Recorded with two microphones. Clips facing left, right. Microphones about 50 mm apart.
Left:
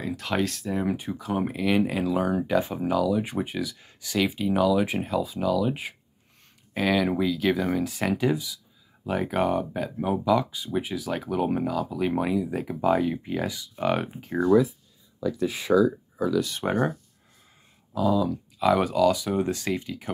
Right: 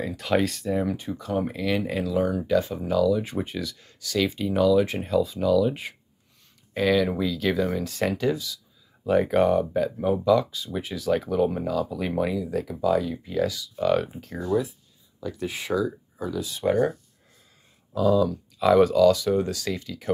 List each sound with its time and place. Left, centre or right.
0.0 s speech: centre
9.0 s speech: centre; by 14.4 s left
16.3 s speech: left
16.6 s speech: left
17.9 s speech: centre; by 20.1 s left